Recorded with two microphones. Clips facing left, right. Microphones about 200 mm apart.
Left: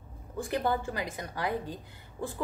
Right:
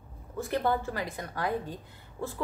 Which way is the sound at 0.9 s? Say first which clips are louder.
Right 1 dB; 10° left (ahead or behind).